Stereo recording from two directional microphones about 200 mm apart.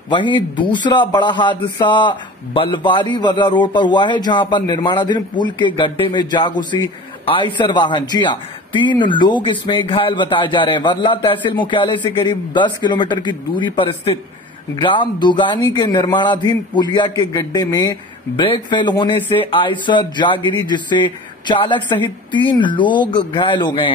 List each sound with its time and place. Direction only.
0.1 s a man's voice: 25° left (ahead or behind)